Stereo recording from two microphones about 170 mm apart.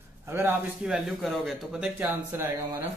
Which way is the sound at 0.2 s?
15° right (ahead or behind).